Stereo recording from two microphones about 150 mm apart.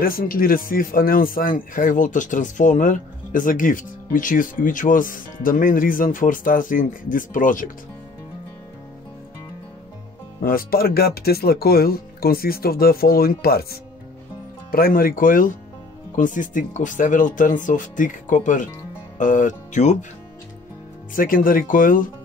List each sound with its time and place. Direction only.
0.0 s speech: 75° left (ahead or behind)
10.4 s speech: 75° left (ahead or behind)
14.7 s speech: 75° left (ahead or behind); by 20.1 s 55° left (ahead or behind)
21.1 s speech: 65° left (ahead or behind)